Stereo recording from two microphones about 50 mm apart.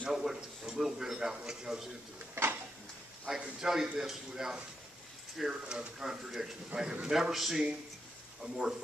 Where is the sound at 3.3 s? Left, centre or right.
Centre.